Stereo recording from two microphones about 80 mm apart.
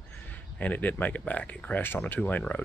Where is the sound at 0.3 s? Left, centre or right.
Centre.